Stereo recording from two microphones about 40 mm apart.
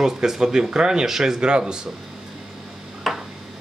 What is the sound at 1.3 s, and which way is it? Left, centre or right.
Speech, right.